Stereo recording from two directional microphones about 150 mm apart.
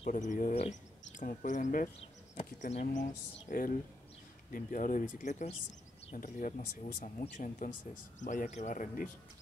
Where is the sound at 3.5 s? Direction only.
60° left (ahead or behind).